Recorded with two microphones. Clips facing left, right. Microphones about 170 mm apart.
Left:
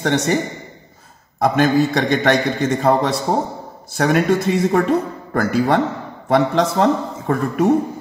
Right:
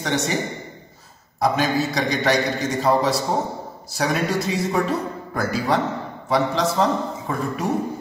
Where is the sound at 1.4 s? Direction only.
55° left (ahead or behind).